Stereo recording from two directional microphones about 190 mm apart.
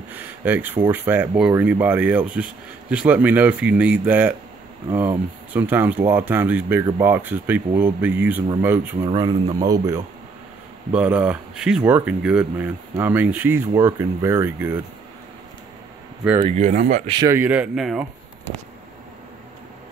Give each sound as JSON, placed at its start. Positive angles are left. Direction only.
{"t": 0.1, "sound": "a sound", "side_deg": -10}
{"t": 0.9, "sound": "speech", "side_deg": -10}
{"t": 9.0, "sound": "speech", "side_deg": -25}
{"t": 10.9, "sound": "speech", "side_deg": -5}
{"t": 16.4, "sound": "speech", "side_deg": -35}
{"t": 17.1, "sound": "speech", "side_deg": -15}